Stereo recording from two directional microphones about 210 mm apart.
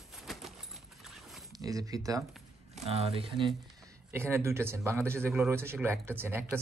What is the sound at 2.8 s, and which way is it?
Speech, 30° right (ahead or behind).